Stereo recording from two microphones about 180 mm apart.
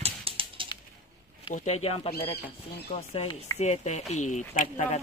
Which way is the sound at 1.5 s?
35° left (ahead or behind).